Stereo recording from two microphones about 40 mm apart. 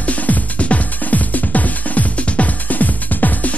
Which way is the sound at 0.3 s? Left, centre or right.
Left.